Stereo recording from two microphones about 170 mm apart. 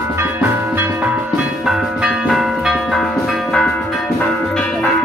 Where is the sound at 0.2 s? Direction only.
10° right (ahead or behind).